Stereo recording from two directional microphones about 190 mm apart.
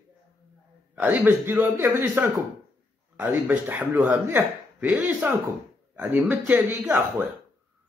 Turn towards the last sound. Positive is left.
turn(degrees=-10)  # may be behind; listen again after turning